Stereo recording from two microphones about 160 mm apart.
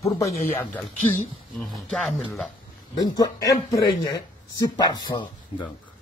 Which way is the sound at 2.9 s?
25° left (ahead or behind).